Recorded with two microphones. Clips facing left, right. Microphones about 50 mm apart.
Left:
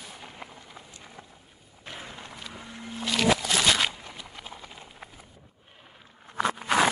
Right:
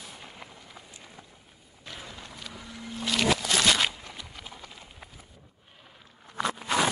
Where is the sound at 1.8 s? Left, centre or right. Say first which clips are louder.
Left 2 dB; left.